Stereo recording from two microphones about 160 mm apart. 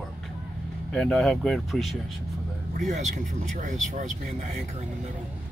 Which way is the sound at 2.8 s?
50° right (ahead or behind).